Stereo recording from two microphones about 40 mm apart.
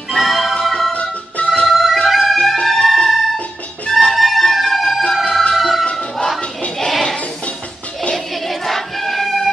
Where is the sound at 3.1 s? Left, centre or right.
Centre.